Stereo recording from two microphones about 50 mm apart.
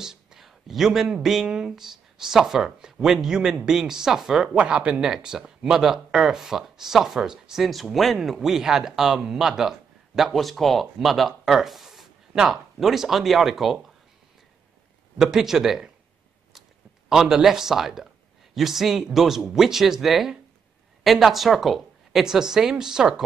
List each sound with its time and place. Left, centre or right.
0.0 s a sound: centre
1.2 s speech: centre
4.6 s speech: right
5.1 s speech: centre
7.6 s speech: centre
15.1 s speech: centre
17.1 s speech: centre